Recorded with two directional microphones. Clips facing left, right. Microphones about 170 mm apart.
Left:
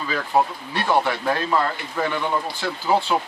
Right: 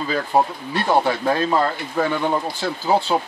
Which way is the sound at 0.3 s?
20° right (ahead or behind).